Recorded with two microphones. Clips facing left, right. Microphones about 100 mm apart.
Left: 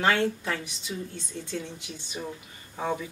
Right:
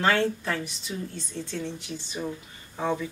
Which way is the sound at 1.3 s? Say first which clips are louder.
Right 3 dB; 45° right (ahead or behind).